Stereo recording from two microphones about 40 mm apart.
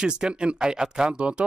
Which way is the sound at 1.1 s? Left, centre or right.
Right.